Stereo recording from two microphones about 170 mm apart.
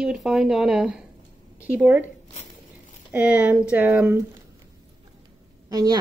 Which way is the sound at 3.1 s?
10° right (ahead or behind).